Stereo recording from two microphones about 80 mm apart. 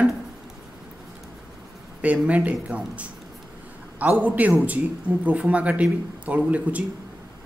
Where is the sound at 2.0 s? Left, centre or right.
Centre.